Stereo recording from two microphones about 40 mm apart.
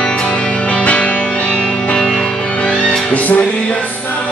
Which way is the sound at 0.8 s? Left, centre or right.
Left.